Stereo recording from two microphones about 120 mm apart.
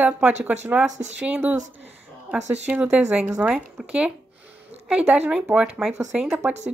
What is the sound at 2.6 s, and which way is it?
Speech, 10° right (ahead or behind).